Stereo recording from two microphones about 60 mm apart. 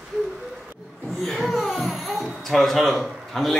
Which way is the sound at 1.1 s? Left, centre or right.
Centre.